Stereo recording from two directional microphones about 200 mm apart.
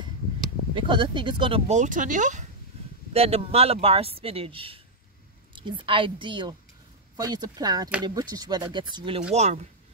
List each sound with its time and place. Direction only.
0.7 s speech: 25° right (ahead or behind)